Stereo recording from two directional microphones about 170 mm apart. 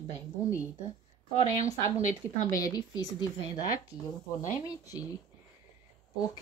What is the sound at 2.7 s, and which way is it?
Speech, 25° left (ahead or behind).